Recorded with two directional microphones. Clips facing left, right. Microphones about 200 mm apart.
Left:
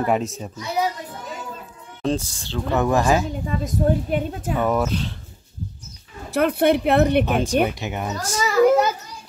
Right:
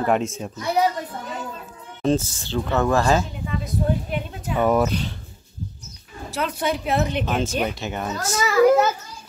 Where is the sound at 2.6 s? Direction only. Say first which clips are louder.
Left 1 dB; 15° left (ahead or behind).